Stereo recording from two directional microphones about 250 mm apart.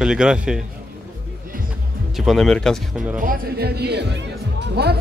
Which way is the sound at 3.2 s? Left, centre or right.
Right.